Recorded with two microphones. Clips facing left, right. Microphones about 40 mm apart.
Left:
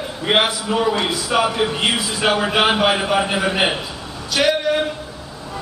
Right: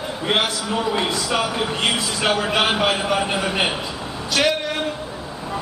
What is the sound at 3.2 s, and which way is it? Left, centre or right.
Speech, centre.